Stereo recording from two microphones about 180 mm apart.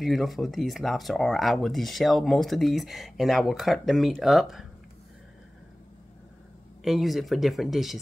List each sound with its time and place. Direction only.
0.0 s speech: centre (ahead or behind)
6.8 s speech: centre (ahead or behind)